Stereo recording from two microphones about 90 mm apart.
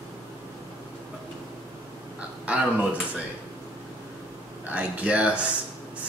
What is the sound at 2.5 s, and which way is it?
Speech, 15° right (ahead or behind).